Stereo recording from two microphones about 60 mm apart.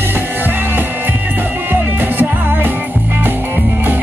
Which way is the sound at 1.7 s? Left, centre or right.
Right.